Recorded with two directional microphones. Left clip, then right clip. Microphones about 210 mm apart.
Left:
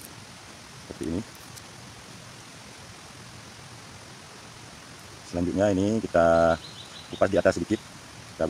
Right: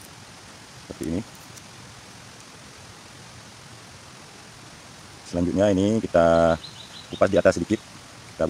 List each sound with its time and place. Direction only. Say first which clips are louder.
5.3 s speech: right 3 dB; 35° right (ahead or behind)